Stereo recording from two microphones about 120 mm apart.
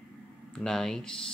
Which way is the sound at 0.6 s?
5° left (ahead or behind).